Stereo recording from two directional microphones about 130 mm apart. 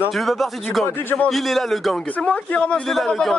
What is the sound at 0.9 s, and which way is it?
Speech, 15° left (ahead or behind).